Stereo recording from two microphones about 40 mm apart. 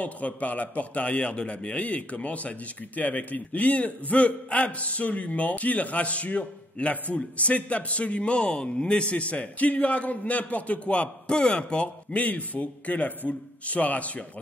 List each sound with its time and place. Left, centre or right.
0.0 s a man's voice: left
8.4 s a man's voice: centre; by 14.2 s left